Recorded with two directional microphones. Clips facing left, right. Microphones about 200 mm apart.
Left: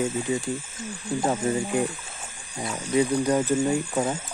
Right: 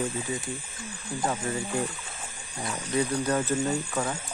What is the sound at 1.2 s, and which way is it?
Speech, 25° left (ahead or behind).